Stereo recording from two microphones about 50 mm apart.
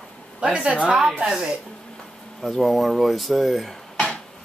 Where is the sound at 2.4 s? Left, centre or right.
Centre.